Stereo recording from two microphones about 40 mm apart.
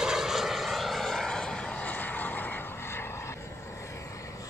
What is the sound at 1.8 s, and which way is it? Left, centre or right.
Vehicle, left.